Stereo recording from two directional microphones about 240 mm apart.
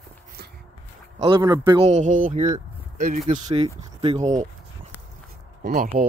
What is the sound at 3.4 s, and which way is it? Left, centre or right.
Speech, right.